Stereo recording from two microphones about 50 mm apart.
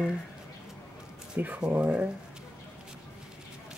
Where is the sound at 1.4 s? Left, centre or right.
Right.